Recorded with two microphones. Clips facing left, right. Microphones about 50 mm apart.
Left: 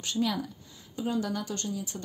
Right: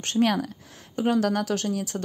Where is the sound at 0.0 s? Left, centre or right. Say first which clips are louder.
Right 7 dB; right.